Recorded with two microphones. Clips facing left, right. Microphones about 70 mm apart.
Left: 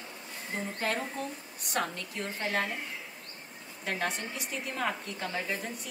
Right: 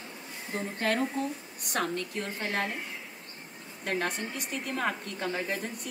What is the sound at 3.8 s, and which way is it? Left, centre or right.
Speech, right.